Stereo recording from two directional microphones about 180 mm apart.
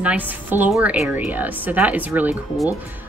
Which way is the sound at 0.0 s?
10° right (ahead or behind).